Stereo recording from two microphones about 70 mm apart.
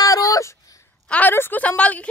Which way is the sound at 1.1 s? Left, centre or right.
Left.